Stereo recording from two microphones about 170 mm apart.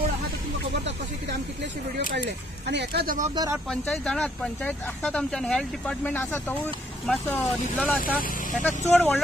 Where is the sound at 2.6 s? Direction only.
80° right.